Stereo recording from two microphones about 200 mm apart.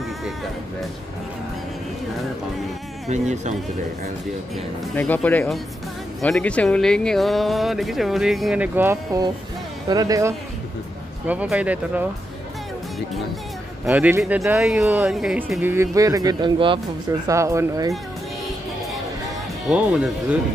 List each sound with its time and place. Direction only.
3.1 s speech: 35° right (ahead or behind)
4.9 s speech: 10° left (ahead or behind); by 10.3 s 15° right (ahead or behind)
11.2 s speech: 5° right (ahead or behind)
13.8 s speech: 10° right (ahead or behind); by 16.8 s 25° right (ahead or behind)
17.3 s speech: 15° right (ahead or behind)
19.7 s speech: centre (ahead or behind)